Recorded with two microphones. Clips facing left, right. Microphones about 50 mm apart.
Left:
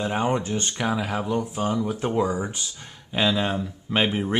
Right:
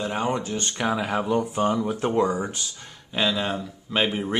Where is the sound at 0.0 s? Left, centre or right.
Centre.